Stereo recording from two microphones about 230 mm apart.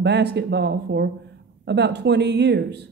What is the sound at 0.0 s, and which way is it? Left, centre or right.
A woman's voice, right.